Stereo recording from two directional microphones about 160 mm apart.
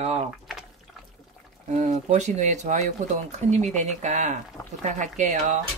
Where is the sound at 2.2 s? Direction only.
50° right (ahead or behind).